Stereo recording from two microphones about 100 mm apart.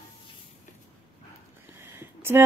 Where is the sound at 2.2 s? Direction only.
25° right (ahead or behind).